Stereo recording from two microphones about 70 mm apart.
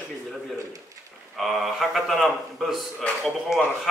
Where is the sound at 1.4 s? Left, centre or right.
Centre.